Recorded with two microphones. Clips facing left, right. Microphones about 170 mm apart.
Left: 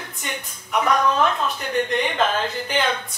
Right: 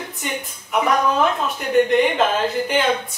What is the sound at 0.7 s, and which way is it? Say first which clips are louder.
Speech: right 1 dB; 5° right (ahead or behind).